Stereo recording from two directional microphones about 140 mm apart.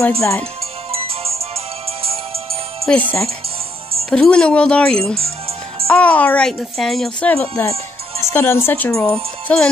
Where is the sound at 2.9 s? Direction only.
10° left (ahead or behind).